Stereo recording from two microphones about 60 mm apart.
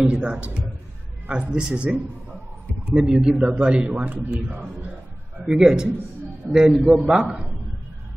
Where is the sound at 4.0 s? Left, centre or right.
Right.